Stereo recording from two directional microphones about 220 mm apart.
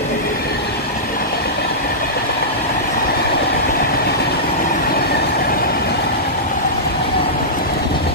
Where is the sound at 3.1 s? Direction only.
45° left (ahead or behind).